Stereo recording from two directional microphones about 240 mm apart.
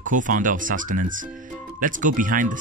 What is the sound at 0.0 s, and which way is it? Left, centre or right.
Speech, right.